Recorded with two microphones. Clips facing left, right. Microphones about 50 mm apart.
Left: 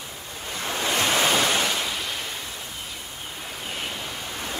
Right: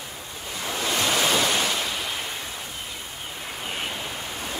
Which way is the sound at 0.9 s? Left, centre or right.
Left.